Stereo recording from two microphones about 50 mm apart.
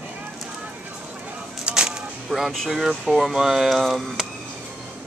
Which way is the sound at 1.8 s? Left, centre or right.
Centre.